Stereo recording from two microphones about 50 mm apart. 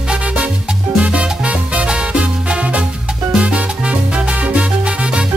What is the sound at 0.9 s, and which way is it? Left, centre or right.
Salsa music, right.